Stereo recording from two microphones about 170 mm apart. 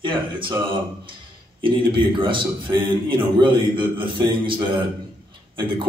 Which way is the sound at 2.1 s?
30° right (ahead or behind).